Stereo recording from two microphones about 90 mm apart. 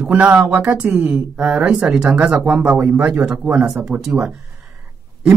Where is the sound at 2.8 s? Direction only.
25° right (ahead or behind).